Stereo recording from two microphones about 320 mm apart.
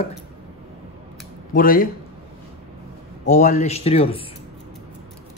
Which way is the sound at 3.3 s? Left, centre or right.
Left.